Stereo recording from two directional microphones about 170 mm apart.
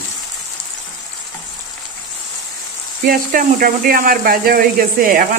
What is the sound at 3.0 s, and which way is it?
Speech, 55° right (ahead or behind).